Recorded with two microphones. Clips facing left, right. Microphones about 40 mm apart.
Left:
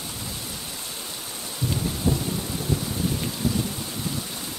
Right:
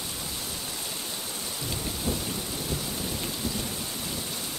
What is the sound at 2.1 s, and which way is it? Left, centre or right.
Thunder, left.